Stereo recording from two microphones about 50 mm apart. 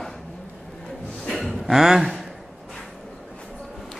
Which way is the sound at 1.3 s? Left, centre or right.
Centre.